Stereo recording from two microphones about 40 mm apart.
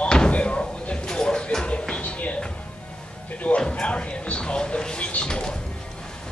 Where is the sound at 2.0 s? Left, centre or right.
Left.